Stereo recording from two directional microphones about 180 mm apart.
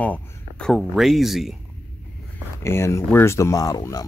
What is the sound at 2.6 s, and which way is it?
Speech, 15° left (ahead or behind).